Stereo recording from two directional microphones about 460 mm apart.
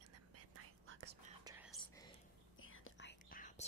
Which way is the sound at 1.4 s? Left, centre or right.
Centre.